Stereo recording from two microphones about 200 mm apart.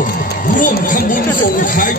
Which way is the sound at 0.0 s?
40° left (ahead or behind).